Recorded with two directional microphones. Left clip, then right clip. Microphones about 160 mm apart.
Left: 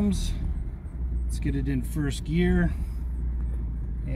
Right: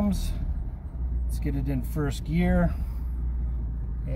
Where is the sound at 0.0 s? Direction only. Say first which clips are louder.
Left 1 dB; 20° right (ahead or behind).